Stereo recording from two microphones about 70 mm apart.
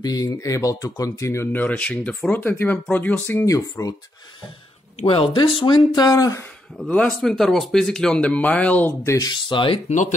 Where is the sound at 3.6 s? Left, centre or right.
Left.